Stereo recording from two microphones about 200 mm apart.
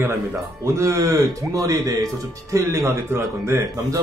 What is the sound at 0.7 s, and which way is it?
Speech, 15° right (ahead or behind).